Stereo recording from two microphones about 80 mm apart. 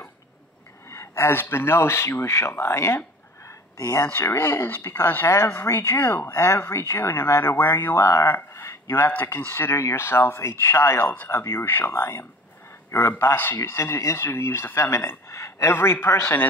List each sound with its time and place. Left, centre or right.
0.8 s speech: left
3.8 s speech: left
4.1 s speech: left
6.3 s speech: left
8.1 s a sound: left
9.4 s speech: left
15.7 s speech: left